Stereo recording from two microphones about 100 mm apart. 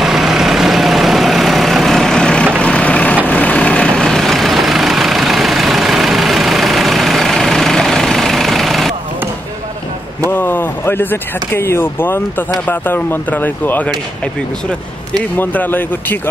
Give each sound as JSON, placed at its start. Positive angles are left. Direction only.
{"t": 0.0, "sound": "vehicle", "side_deg": -5}
{"t": 10.3, "sound": "speech", "side_deg": 20}
{"t": 15.3, "sound": "speech", "side_deg": 20}